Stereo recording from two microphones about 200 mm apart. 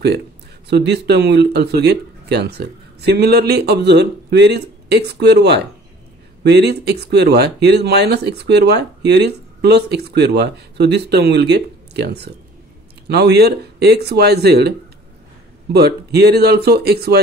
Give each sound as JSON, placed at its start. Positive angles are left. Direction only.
{"t": 0.7, "sound": "speech", "side_deg": -55}
{"t": 15.7, "sound": "speech", "side_deg": -55}